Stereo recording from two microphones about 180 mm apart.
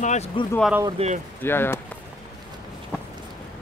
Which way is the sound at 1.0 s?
35° right (ahead or behind).